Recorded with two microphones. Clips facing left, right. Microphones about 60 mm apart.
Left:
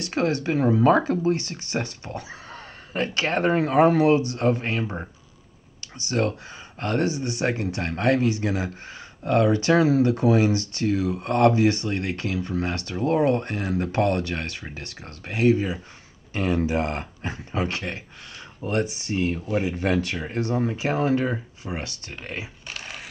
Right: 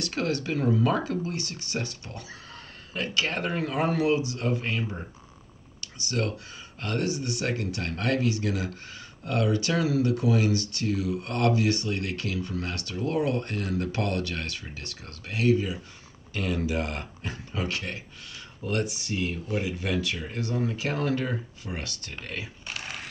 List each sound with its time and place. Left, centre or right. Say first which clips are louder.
0.0 s speech: left 5 dB; left
19.8 s speech: left 5 dB; left
22.7 s a sound: even; centre